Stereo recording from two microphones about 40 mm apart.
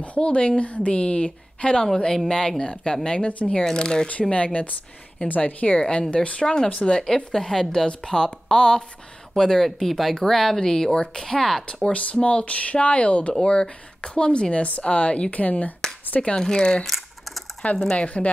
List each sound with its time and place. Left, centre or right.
0.0 s a woman's voice: left
3.7 s a woman's voice: left
5.8 s a woman's voice: left
6.4 s speech: centre
9.8 s speech: centre
11.9 s speech: left
13.4 s a woman's voice: left
16.2 s a woman's voice: left
16.8 s a sound: centre
17.9 s speech: left